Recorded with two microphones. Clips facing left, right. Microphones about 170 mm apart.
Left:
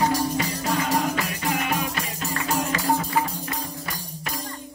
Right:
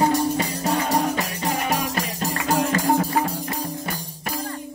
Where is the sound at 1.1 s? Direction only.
35° right (ahead or behind).